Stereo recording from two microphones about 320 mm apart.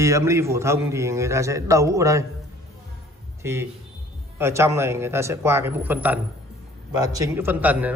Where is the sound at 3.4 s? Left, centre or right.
Centre.